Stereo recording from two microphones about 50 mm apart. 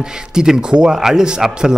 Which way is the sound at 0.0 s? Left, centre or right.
Centre.